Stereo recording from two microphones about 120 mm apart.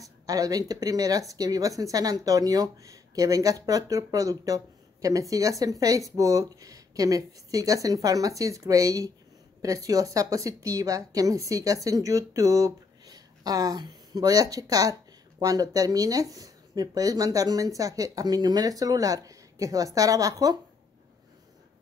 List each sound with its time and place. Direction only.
0.0 s a woman's voice: 30° right (ahead or behind)